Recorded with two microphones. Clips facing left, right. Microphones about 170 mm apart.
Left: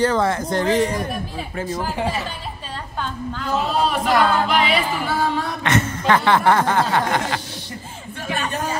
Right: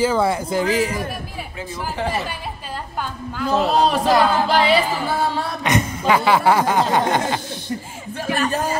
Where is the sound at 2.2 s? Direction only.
10° right (ahead or behind).